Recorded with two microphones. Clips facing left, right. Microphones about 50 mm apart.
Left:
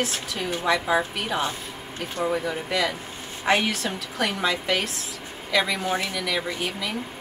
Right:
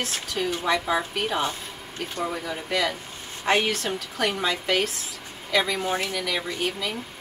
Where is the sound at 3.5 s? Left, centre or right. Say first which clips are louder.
Even; centre.